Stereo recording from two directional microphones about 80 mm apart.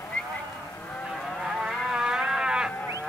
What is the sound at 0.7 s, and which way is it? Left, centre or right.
Cattle, left.